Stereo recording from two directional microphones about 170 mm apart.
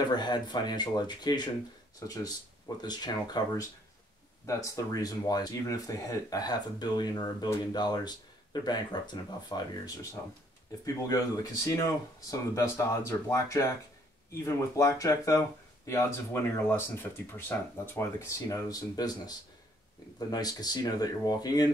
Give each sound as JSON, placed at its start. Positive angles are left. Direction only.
{"t": 0.1, "sound": "speech", "side_deg": 25}
{"t": 11.1, "sound": "speech", "side_deg": 20}